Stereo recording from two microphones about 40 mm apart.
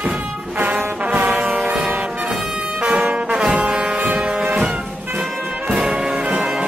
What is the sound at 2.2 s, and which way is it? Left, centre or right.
Brass instrument, centre.